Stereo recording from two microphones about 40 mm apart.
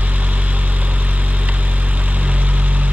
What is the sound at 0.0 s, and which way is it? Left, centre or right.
Vehicle, right.